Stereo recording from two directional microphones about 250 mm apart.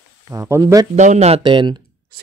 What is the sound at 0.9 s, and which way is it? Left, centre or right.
Speech, right.